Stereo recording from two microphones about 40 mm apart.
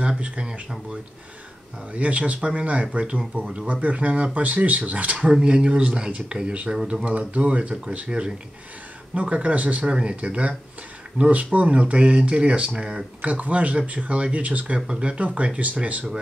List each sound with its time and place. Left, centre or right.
0.2 s speech: right
1.9 s speech: right
9.8 s speech: right
11.2 s speech: right
13.3 s speech: right
14.9 s speech: right
15.1 s speech: right